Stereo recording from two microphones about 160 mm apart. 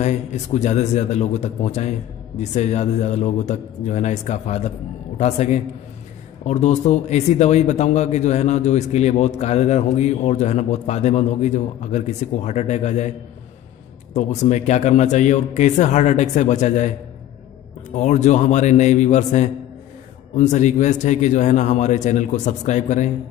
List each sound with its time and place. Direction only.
0.0 s speech: 45° left (ahead or behind)
14.1 s speech: 45° left (ahead or behind)
17.9 s speech: 45° left (ahead or behind)